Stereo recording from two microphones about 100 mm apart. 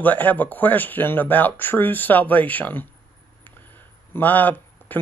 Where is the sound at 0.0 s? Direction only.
15° left (ahead or behind).